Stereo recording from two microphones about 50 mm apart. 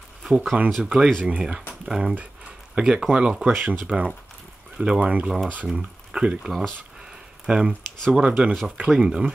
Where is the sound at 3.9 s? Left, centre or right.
Right.